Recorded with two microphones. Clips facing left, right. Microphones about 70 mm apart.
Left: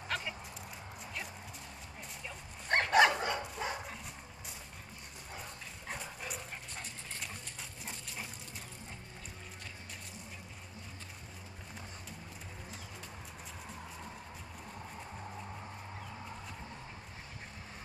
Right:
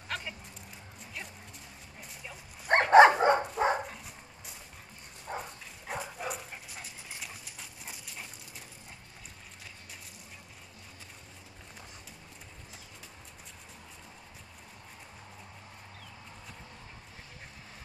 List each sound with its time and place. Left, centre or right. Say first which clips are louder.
0.1 s dog: even; centre
2.7 s dog: right 8 dB; right
3.8 s dog: right 2 dB; centre